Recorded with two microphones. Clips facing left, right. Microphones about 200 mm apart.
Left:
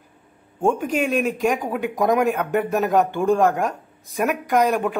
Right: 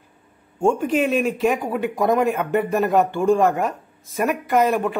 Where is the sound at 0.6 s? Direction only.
Centre (ahead or behind).